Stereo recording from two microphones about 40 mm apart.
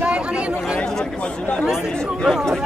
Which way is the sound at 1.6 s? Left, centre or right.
Centre.